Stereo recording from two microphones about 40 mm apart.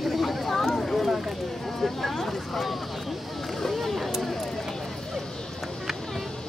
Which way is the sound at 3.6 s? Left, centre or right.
Centre.